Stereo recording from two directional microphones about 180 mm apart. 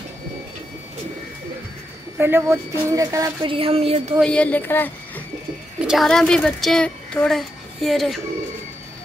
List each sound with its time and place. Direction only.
2.1 s a woman's voice: 10° right (ahead or behind)
3.5 s a sound: 30° right (ahead or behind)
4.2 s a woman's voice: 5° left (ahead or behind)
5.8 s speech: centre (ahead or behind)